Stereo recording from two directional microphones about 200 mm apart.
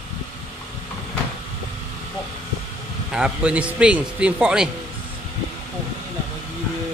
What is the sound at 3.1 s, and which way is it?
A man's voice, 5° right (ahead or behind).